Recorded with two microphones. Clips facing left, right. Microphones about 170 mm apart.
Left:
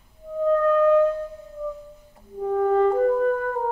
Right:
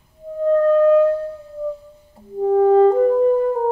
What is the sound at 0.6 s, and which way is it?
Music, 30° right (ahead or behind).